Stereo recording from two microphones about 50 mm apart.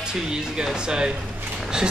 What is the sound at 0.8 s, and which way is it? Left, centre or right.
Speech, centre.